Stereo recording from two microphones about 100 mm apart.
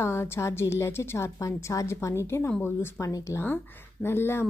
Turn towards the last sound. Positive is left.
turn(degrees=25)  # may be behind; listen again after turning